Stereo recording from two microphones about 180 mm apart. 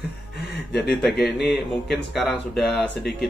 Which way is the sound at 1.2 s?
Centre (ahead or behind).